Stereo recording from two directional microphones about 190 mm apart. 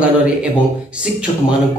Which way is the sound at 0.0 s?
5° right (ahead or behind).